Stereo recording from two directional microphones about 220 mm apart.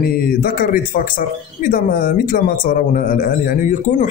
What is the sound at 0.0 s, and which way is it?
Speech, 45° left (ahead or behind).